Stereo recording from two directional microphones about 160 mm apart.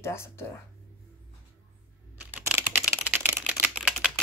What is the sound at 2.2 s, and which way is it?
Computer keyboard, 10° right (ahead or behind).